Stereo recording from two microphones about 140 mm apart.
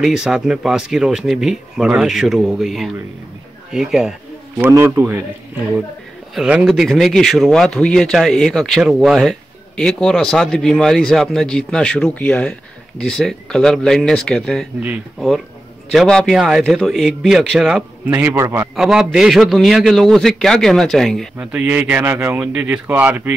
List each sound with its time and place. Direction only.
0.0 s a man's voice: 5° right (ahead or behind)
4.6 s speech: 15° right (ahead or behind)
6.3 s a man's voice: 5° right (ahead or behind)
18.8 s a man's voice: 5° right (ahead or behind)
21.4 s speech: 10° right (ahead or behind)